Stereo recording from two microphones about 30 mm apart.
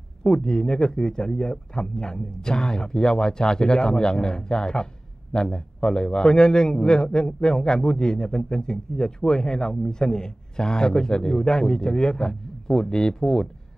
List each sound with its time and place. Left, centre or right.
0.2 s a man's voice: left